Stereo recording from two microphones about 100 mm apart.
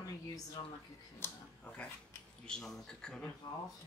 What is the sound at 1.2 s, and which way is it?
Speech, 25° left (ahead or behind).